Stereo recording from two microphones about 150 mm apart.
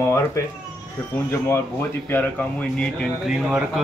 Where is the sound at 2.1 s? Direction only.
10° left (ahead or behind).